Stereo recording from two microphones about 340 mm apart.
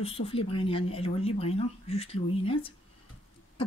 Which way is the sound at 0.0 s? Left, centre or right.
Centre.